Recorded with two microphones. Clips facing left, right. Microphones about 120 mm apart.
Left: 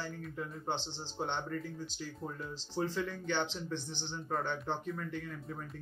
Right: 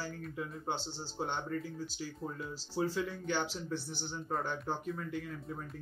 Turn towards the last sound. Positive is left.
turn(degrees=-5)  # may be behind; listen again after turning